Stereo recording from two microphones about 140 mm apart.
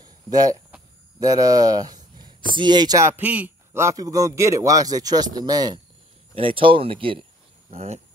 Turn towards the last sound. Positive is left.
turn(degrees=-50)  # may be behind; listen again after turning